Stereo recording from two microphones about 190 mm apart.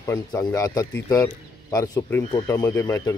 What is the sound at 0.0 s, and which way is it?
Speech, 20° left (ahead or behind).